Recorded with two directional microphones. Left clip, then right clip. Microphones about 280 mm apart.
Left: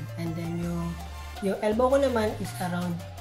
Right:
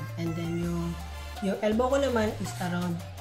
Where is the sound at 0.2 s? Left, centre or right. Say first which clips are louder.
Right 1 dB; centre.